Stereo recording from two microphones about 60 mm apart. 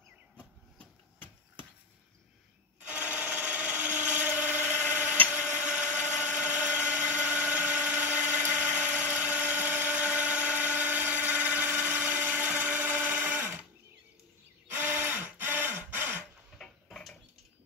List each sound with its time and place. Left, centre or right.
0.4 s train: left
2.9 s wood: right
5.4 s a sound: right
11.8 s blender: right
14.7 s a sound: right
16.5 s tick-tock: centre